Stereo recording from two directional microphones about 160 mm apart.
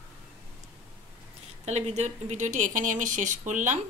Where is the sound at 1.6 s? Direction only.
45° right (ahead or behind).